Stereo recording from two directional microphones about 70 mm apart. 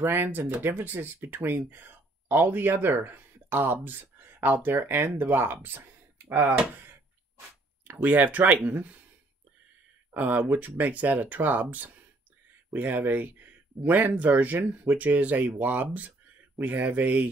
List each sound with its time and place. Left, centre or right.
0.0 s speech: right
7.3 s speech: right
10.1 s speech: right